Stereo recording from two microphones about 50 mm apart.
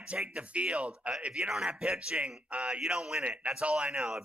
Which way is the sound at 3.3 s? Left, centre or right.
Right.